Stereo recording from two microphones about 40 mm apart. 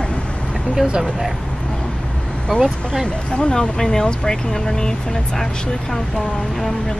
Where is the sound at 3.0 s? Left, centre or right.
Left.